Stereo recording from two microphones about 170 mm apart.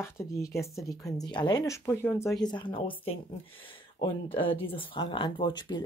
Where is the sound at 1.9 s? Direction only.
15° left (ahead or behind).